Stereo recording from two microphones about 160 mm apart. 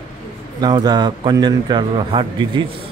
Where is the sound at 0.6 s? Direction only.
25° right (ahead or behind).